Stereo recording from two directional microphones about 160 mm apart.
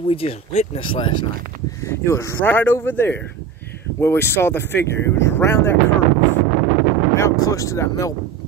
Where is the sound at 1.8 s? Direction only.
15° left (ahead or behind).